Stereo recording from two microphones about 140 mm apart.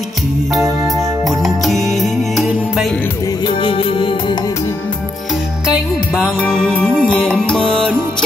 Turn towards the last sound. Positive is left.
turn(degrees=5)  # may be behind; listen again after turning